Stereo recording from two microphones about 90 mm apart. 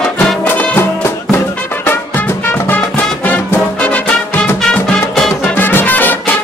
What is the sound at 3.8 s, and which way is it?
Music, 15° left (ahead or behind).